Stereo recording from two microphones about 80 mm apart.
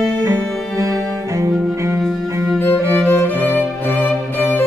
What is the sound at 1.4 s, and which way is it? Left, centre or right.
Music, right.